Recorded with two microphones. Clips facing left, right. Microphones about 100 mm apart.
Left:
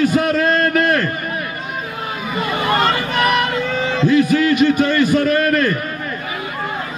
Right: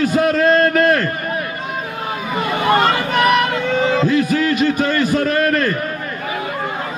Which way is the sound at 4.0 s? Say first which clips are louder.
Left 2 dB; 40° right (ahead or behind).